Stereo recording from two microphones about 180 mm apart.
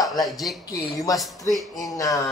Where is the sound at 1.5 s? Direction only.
Centre (ahead or behind).